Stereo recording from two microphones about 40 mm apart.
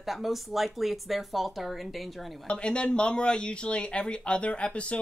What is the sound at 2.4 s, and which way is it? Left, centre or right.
Speech, left.